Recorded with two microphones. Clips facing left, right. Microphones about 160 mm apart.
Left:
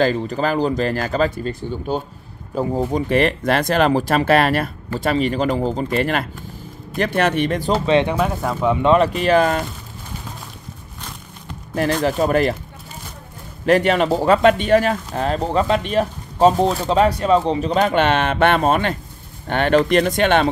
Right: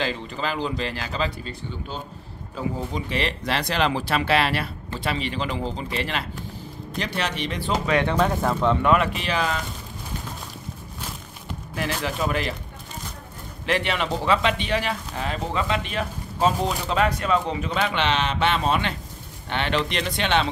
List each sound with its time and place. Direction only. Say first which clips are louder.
0.0 s speech: left 9 dB; 45° left (ahead or behind)
7.8 s speech: left 6 dB; 25° left (ahead or behind)
8.1 s speech: left 1 dB; 5° left (ahead or behind)
8.8 s speech: left 6 dB; 35° left (ahead or behind); by 9.7 s 50° left (ahead or behind)
11.7 s speech: left 9 dB; 40° left (ahead or behind)
13.7 s speech: left 9 dB; 45° left (ahead or behind)